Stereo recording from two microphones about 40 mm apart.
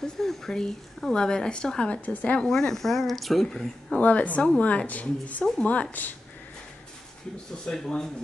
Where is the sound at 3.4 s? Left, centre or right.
Centre.